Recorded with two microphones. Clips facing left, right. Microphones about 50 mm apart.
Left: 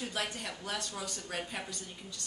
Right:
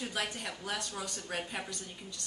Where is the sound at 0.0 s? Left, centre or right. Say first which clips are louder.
Even; centre.